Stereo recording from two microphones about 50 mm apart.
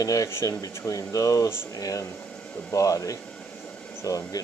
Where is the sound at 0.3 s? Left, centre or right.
Left.